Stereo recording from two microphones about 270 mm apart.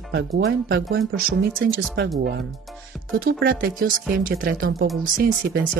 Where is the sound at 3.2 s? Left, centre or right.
Right.